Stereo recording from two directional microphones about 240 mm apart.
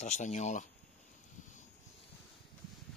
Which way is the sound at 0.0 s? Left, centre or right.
Left.